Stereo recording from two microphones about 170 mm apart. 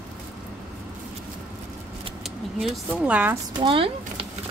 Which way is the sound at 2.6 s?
10° right (ahead or behind).